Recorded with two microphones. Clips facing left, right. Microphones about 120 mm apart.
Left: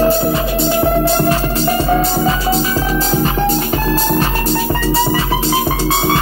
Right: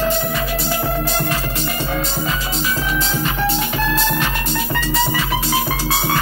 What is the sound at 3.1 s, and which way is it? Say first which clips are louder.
Music: left 6 dB; 40° left (ahead or behind).